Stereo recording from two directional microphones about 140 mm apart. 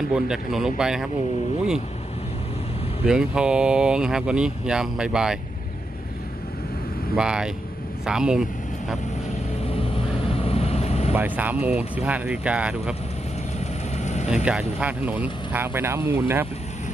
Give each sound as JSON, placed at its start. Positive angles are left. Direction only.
{"t": 0.1, "sound": "speech", "side_deg": -5}
{"t": 3.1, "sound": "speech", "side_deg": -5}
{"t": 7.2, "sound": "speech", "side_deg": -5}
{"t": 9.6, "sound": "vehicle", "side_deg": 45}
{"t": 11.1, "sound": "speech", "side_deg": -10}
{"t": 13.9, "sound": "vehicle", "side_deg": 55}
{"t": 14.3, "sound": "speech", "side_deg": -5}